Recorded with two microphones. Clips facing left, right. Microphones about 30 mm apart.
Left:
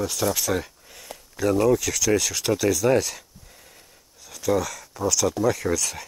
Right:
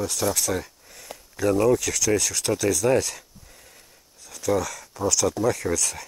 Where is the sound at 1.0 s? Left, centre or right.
Centre.